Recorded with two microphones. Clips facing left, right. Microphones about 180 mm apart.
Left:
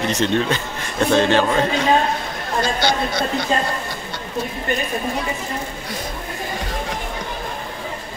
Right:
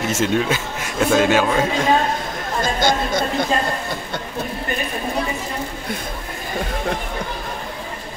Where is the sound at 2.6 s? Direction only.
50° right (ahead or behind).